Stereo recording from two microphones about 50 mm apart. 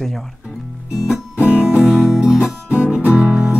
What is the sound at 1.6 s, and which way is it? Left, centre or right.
Music, centre.